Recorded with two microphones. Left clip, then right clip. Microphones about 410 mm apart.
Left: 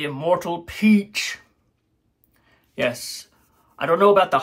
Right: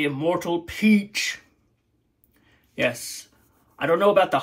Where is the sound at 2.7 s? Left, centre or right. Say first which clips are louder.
Left 1 dB; left.